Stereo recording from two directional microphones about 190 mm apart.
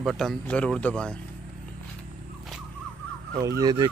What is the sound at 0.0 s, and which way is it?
Speech, centre (ahead or behind).